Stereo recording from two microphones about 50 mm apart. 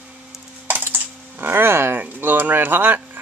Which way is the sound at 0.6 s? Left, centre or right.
Right.